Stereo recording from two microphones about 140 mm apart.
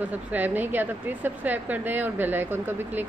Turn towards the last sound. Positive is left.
turn(degrees=-15)  # may be behind; listen again after turning